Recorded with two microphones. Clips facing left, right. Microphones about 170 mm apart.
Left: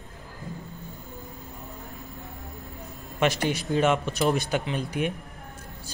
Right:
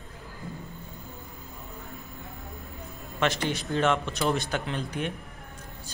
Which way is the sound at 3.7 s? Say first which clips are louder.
Left 2 dB; 10° left (ahead or behind).